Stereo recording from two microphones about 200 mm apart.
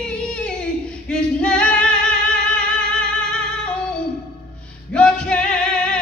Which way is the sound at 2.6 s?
5° left (ahead or behind).